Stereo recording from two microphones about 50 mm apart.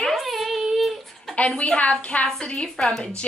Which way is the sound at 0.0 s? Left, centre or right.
Centre.